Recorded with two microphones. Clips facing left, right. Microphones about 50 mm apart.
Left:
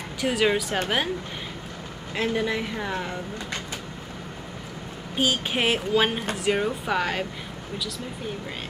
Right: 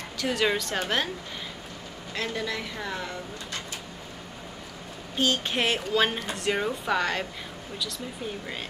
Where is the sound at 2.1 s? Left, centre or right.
Centre.